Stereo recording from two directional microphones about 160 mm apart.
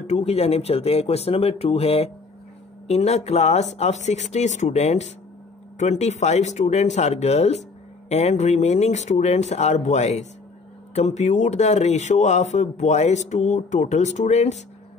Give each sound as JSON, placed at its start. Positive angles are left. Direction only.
{"t": 0.0, "sound": "speech", "side_deg": 40}